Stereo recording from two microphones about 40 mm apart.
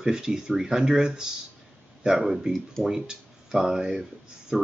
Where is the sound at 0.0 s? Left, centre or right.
Centre.